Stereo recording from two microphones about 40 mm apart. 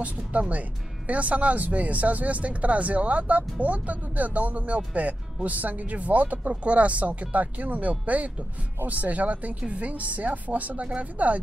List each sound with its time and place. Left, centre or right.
0.0 s speech: right